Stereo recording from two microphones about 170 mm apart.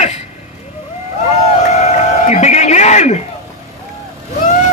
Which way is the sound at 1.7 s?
40° left (ahead or behind).